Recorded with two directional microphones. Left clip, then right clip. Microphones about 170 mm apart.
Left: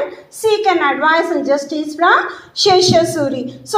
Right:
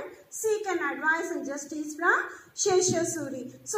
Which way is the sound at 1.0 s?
15° left (ahead or behind).